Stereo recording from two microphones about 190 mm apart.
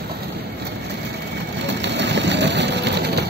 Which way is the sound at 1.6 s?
65° right (ahead or behind).